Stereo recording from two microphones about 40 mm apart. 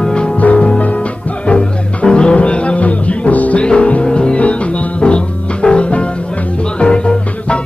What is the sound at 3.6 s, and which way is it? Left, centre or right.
Music, left.